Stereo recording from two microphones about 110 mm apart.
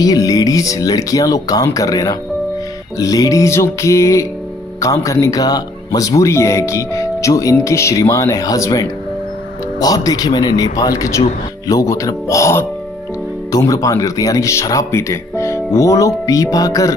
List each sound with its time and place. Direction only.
0.0 s speech: 35° left (ahead or behind)
3.0 s music: 30° left (ahead or behind)
4.7 s speech: 30° left (ahead or behind)
7.5 s music: 25° left (ahead or behind)
9.8 s speech: 35° left (ahead or behind)